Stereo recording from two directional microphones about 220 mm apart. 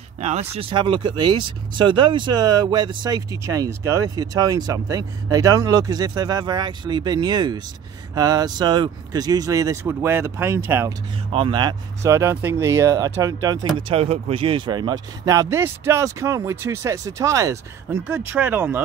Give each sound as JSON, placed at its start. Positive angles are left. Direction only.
{"t": 0.2, "sound": "speech", "side_deg": -30}
{"t": 11.3, "sound": "speech", "side_deg": -20}